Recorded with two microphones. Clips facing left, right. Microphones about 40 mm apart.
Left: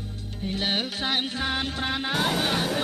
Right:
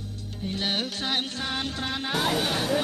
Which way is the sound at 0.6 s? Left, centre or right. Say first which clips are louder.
Left 1 dB; centre.